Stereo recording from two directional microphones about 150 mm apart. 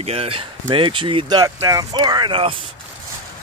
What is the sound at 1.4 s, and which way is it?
Speech, 20° right (ahead or behind).